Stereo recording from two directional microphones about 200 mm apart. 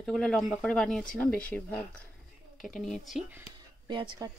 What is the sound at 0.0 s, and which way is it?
Speech, 5° left (ahead or behind).